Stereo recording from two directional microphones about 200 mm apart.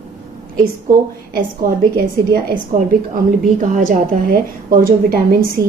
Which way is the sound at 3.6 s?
40° right (ahead or behind).